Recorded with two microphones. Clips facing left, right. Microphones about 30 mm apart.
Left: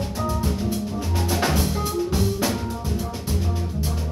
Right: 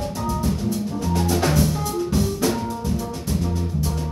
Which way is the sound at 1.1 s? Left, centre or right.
Centre.